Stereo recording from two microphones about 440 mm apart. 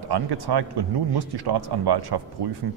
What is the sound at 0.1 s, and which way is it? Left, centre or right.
Speech, right.